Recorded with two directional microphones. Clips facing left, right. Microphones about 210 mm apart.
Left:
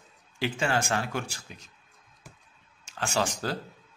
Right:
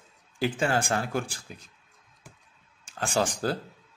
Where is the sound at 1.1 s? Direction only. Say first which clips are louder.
Right 3 dB; 35° right (ahead or behind).